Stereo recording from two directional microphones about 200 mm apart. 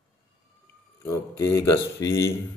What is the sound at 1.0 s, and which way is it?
Speech, 15° left (ahead or behind).